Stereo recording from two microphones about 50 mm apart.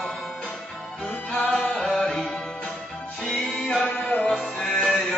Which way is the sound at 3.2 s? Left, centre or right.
Centre.